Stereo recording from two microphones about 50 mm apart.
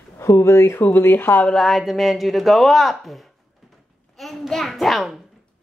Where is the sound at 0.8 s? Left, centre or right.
Left.